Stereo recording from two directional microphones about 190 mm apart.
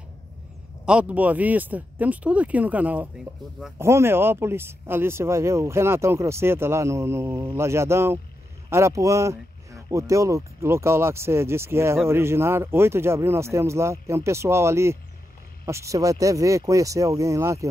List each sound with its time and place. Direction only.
0.8 s speech: 5° right (ahead or behind)